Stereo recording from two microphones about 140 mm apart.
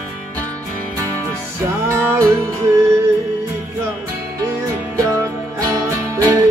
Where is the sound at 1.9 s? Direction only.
15° right (ahead or behind).